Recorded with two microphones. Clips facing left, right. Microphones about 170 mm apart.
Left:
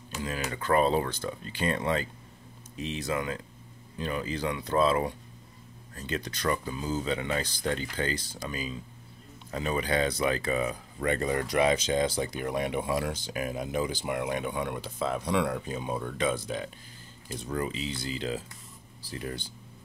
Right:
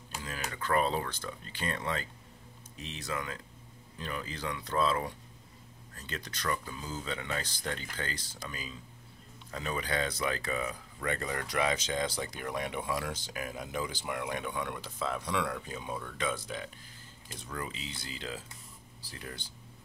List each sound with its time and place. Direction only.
0.2 s speech: 20° left (ahead or behind)